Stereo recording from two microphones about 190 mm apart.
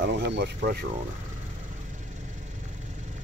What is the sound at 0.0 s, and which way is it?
Speech, 65° right (ahead or behind).